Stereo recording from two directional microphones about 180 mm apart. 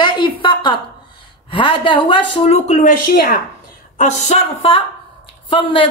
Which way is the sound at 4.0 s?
40° left (ahead or behind).